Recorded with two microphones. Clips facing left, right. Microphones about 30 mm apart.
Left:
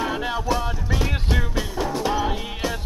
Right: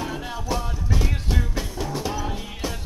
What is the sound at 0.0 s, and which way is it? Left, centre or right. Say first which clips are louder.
Music: left 6 dB; left.